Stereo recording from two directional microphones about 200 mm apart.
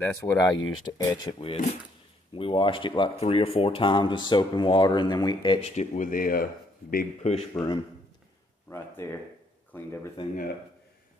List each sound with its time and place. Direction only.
0.0 s speech: 15° left (ahead or behind)
5.8 s speech: 40° left (ahead or behind)
7.5 s speech: 20° left (ahead or behind)
10.2 s speech: 25° left (ahead or behind)